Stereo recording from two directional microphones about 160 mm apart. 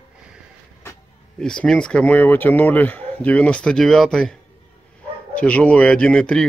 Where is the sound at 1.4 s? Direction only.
5° left (ahead or behind).